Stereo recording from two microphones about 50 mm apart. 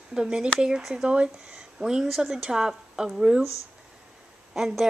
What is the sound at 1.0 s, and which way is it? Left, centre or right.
Speech, centre.